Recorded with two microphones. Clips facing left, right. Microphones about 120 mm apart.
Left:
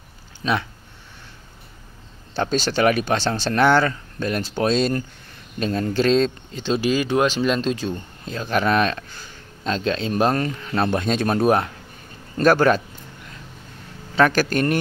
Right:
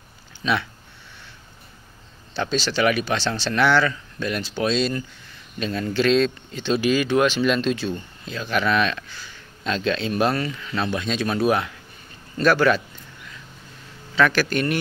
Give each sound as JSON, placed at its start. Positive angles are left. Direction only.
{"t": 0.4, "sound": "speech", "side_deg": 35}
{"t": 2.3, "sound": "speech", "side_deg": 50}
{"t": 14.1, "sound": "speech", "side_deg": 45}